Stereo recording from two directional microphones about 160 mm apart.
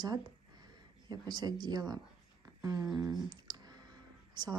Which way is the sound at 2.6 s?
20° right (ahead or behind).